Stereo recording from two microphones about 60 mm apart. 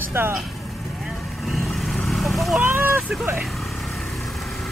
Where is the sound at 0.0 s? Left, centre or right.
Right.